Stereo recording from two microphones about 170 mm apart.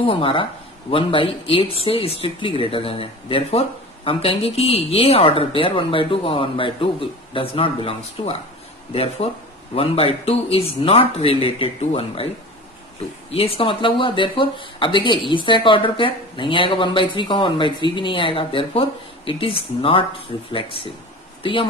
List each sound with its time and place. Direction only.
0.0 s speech: 30° left (ahead or behind)
13.3 s speech: 35° left (ahead or behind)